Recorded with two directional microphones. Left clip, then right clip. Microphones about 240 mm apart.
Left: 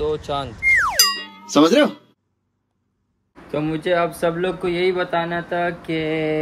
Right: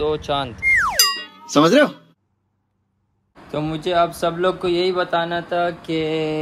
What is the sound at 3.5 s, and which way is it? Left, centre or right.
Speech, centre.